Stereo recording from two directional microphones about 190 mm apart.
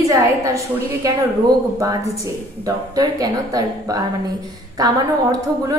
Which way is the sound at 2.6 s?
20° right (ahead or behind).